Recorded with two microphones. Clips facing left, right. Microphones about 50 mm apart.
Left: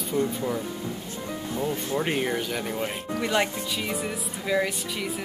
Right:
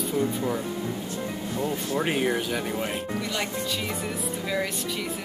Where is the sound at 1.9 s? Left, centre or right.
Centre.